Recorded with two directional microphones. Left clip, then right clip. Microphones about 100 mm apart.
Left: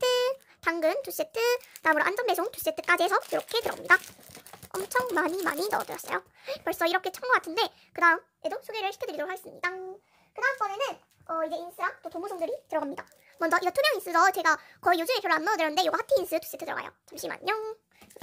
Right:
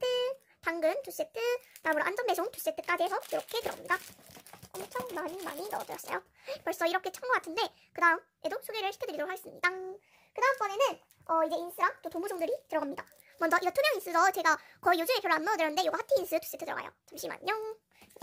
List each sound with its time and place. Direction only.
0.0 s speech: 20° left (ahead or behind)
3.8 s speech: 25° left (ahead or behind)
5.1 s speech: 45° left (ahead or behind)
5.8 s speech: 10° left (ahead or behind)
8.4 s speech: 15° right (ahead or behind)
10.3 s a child's voice: 70° right (ahead or behind)
12.0 s a child's voice: 50° right (ahead or behind)
12.6 s speech: 10° right (ahead or behind)